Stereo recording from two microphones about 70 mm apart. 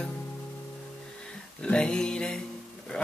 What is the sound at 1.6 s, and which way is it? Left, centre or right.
Music, centre.